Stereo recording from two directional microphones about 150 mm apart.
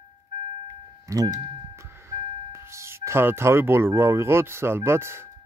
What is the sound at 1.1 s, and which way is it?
Speech, 20° right (ahead or behind).